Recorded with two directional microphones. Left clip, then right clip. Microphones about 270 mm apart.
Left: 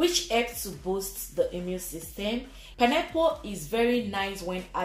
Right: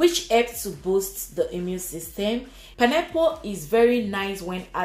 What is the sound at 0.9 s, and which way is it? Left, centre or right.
Speech, right.